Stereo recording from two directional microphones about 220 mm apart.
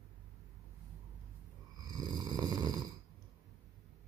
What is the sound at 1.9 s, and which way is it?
Snoring, 20° right (ahead or behind).